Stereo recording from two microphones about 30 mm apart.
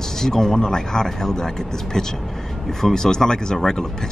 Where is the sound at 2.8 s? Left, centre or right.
Centre.